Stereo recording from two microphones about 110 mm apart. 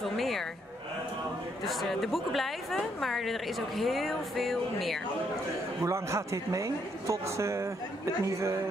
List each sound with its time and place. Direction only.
0.0 s a sound: centre (ahead or behind)
1.7 s a woman's voice: centre (ahead or behind)
5.9 s speech: 25° right (ahead or behind)